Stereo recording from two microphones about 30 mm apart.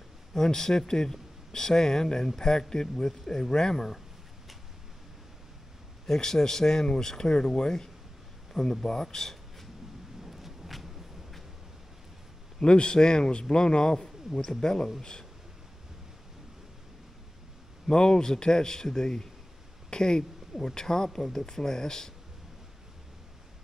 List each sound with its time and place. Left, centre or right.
0.5 s a man's voice: centre
6.0 s speech: centre
10.2 s a sound: centre
12.5 s a man's voice: left
14.0 s a sound: centre
14.6 s a man's voice: left
17.8 s a man's voice: left